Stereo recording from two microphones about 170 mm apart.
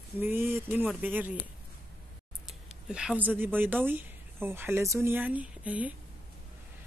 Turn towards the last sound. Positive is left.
turn(degrees=-10)  # may be behind; listen again after turning